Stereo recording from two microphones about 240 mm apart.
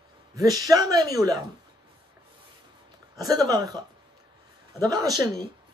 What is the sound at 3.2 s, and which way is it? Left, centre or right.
Speech, centre.